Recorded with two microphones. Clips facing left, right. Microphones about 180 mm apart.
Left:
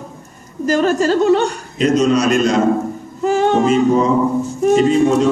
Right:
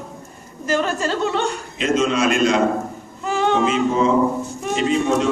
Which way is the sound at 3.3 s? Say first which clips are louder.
Left 4 dB; 40° left (ahead or behind).